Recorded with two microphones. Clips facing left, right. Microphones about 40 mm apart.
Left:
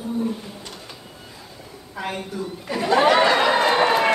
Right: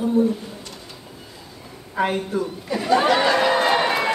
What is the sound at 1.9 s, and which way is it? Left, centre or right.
Speech, right.